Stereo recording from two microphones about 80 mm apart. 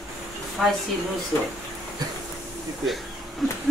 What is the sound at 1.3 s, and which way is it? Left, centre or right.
Speech, left.